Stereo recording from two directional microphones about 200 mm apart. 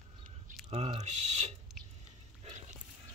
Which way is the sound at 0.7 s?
30° right (ahead or behind).